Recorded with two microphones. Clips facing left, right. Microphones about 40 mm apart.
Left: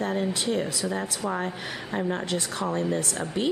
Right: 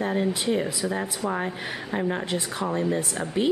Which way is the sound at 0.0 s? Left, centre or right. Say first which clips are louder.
Right 2 dB; right.